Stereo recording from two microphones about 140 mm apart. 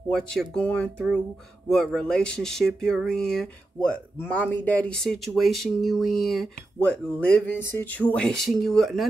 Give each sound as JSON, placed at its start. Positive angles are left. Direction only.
{"t": 0.1, "sound": "speech", "side_deg": 5}